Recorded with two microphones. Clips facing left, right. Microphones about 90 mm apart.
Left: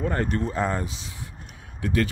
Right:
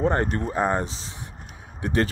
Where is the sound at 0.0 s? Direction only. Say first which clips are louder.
Right 3 dB; 30° right (ahead or behind).